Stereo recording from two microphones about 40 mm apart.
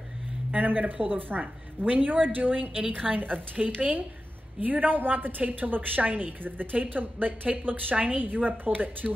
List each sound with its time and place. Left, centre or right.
0.5 s a woman's voice: right